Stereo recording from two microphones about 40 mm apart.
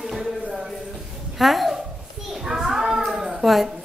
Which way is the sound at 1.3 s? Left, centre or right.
Centre.